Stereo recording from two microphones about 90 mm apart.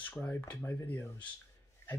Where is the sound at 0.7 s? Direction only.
25° left (ahead or behind).